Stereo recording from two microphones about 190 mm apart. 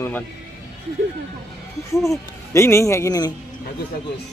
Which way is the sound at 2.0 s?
15° left (ahead or behind).